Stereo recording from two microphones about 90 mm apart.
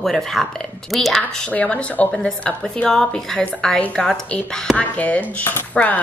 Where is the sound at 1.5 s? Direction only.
15° left (ahead or behind).